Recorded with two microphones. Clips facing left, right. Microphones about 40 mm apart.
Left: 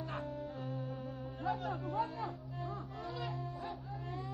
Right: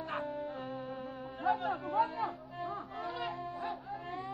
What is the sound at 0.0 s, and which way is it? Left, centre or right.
Music, right.